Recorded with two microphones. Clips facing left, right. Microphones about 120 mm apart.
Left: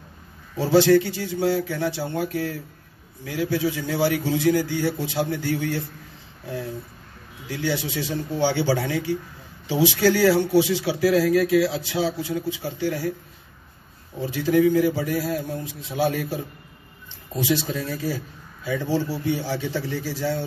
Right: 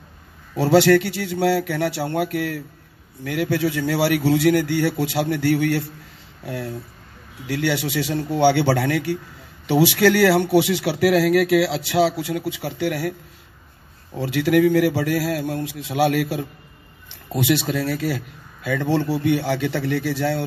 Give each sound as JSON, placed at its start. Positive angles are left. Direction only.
{"t": 0.6, "sound": "a man's voice", "side_deg": -70}
{"t": 14.2, "sound": "a man's voice", "side_deg": -75}